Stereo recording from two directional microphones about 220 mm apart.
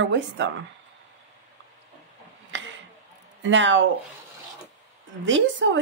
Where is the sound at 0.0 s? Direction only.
55° right (ahead or behind).